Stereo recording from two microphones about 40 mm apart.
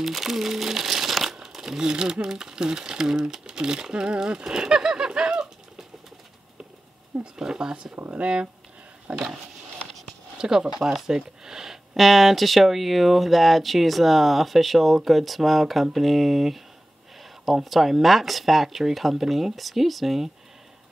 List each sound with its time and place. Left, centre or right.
0.0 s speech: centre; by 5.5 s right
7.3 s speech: centre
10.3 s speech: centre
17.6 s speech: centre